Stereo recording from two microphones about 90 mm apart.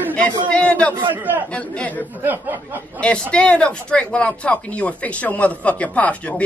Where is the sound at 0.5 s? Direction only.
10° left (ahead or behind).